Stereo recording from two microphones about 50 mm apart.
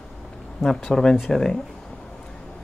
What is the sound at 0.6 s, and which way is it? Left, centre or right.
Speech, centre.